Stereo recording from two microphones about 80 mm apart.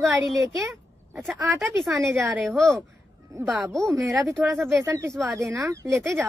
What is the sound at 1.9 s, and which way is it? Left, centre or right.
Speech, right.